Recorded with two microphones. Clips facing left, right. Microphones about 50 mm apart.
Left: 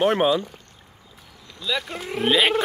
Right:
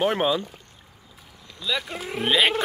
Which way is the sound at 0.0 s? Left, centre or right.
Centre.